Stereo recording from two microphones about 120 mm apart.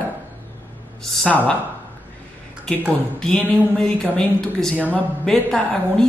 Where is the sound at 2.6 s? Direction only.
5° left (ahead or behind).